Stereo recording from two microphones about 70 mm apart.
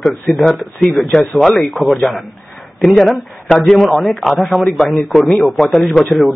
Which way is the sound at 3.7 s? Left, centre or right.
Centre.